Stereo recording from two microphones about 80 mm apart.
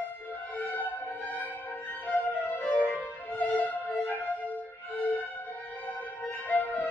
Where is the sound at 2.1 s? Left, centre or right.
Centre.